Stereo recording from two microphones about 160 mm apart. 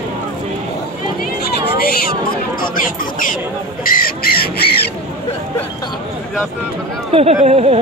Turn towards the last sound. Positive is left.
turn(degrees=-45)  # may be behind; listen again after turning